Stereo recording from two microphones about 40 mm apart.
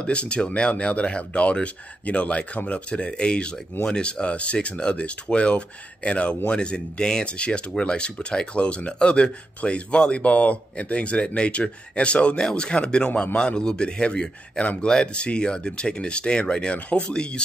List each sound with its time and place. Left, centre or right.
0.0 s speech: left
14.6 s speech: left
14.9 s speech: centre